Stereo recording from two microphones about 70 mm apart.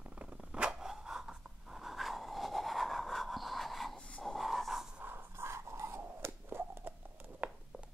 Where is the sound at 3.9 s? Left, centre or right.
Centre.